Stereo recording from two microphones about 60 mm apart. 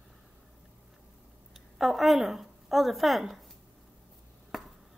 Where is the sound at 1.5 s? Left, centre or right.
Centre.